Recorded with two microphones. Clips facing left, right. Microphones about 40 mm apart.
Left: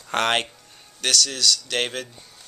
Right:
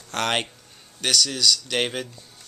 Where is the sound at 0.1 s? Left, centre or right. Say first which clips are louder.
Left 3 dB; centre.